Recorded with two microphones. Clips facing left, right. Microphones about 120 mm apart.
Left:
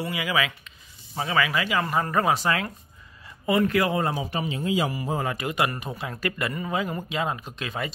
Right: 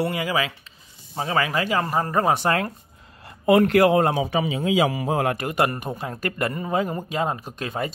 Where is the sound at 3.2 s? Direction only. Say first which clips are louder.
Right 6 dB; 65° right (ahead or behind).